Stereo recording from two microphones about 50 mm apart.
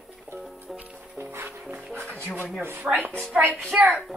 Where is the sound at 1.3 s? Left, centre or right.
Right.